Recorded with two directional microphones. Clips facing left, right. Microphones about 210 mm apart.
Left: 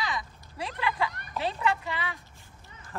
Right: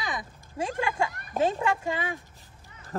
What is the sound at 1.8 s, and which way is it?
Speech, 45° right (ahead or behind).